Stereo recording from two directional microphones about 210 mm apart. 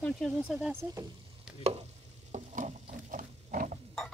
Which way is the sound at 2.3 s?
35° right (ahead or behind).